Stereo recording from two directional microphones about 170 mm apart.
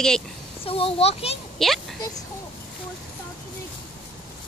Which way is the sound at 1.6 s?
Centre (ahead or behind).